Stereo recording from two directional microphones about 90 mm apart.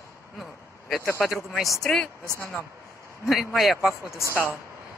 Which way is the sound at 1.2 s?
Centre (ahead or behind).